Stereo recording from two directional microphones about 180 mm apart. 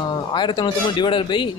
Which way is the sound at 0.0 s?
25° left (ahead or behind).